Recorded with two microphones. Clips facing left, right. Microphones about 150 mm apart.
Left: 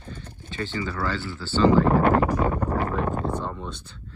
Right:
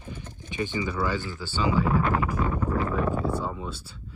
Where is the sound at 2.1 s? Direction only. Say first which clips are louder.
Left 5 dB; 40° left (ahead or behind).